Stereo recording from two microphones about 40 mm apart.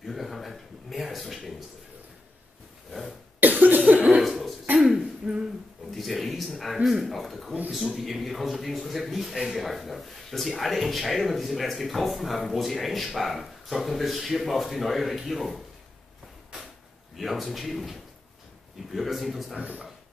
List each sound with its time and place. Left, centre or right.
0.0 s a sound: centre
2.9 s cough: centre
3.3 s cough: right
4.2 s cough: centre
5.2 s a sound: centre
5.9 s a man's voice: centre
17.2 s a man's voice: centre